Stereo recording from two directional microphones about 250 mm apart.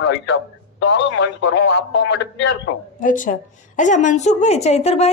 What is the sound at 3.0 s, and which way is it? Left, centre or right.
A woman's voice, left.